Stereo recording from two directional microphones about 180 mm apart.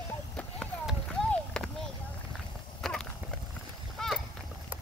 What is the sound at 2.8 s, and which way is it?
Horse, 5° left (ahead or behind).